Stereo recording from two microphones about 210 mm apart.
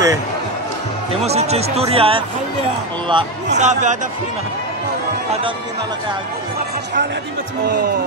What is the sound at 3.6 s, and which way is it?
Speech, 35° right (ahead or behind).